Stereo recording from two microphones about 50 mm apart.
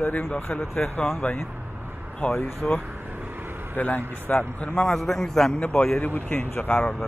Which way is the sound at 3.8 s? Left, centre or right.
Left.